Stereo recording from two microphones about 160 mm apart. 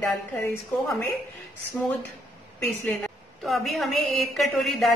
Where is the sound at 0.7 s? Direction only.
10° left (ahead or behind).